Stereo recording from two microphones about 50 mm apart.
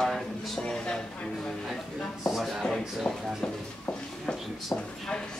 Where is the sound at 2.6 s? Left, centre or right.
Centre.